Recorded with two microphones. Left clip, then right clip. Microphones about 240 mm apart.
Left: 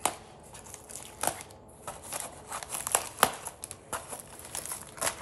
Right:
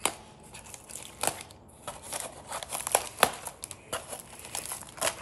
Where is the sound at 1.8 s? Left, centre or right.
Centre.